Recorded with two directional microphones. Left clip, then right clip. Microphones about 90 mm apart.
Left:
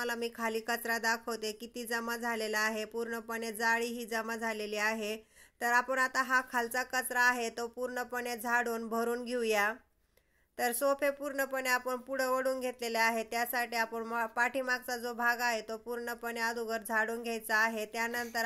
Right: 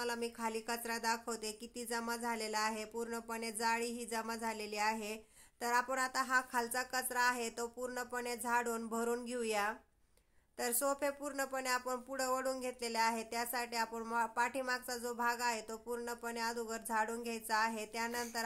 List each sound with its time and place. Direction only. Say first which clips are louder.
0.0 s a woman's voice: left 4 dB; 35° left (ahead or behind)